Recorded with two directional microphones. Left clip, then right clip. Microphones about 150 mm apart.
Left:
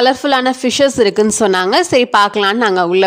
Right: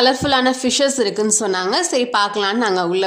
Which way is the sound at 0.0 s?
45° left (ahead or behind).